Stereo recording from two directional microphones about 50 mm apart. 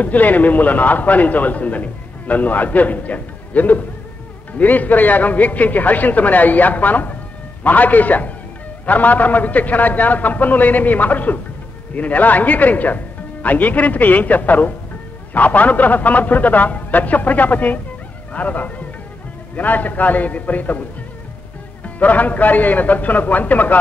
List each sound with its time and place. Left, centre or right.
0.0 s a man's voice: left
21.8 s a man's voice: left